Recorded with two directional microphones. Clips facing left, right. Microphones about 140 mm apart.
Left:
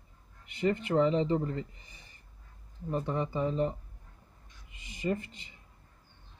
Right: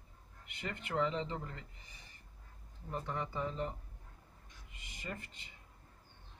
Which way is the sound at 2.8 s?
20° left (ahead or behind).